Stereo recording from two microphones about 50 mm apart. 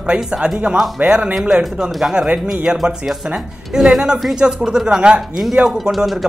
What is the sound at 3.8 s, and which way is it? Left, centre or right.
Speech, centre.